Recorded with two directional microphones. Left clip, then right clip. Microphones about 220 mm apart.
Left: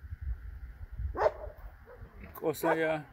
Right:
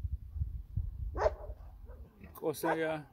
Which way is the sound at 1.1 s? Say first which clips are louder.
Left 3 dB; 45° left (ahead or behind).